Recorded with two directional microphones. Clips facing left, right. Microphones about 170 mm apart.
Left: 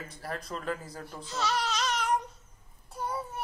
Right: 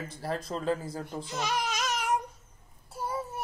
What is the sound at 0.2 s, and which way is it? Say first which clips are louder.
Speech: right 5 dB; 30° right (ahead or behind).